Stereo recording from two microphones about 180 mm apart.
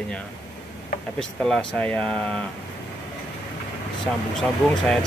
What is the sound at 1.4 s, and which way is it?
Speech, 5° left (ahead or behind).